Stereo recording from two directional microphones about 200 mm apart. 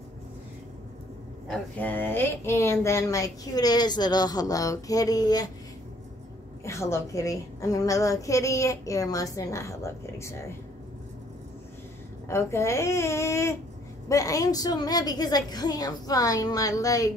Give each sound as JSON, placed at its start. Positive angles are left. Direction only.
{"t": 1.5, "sound": "speech", "side_deg": 10}
{"t": 6.6, "sound": "speech", "side_deg": 15}
{"t": 12.3, "sound": "speech", "side_deg": 15}